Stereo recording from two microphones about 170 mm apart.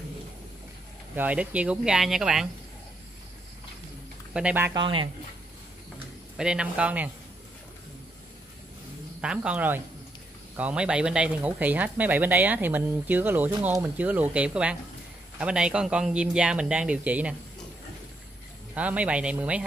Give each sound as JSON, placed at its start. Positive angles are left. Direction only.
{"t": 1.1, "sound": "speech", "side_deg": -10}
{"t": 4.3, "sound": "speech", "side_deg": -5}
{"t": 4.7, "sound": "speech", "side_deg": -30}
{"t": 6.3, "sound": "speech", "side_deg": -5}
{"t": 9.2, "sound": "speech", "side_deg": -5}
{"t": 18.8, "sound": "speech", "side_deg": -10}